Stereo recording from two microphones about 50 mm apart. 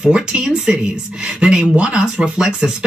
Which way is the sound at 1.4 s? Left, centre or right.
Right.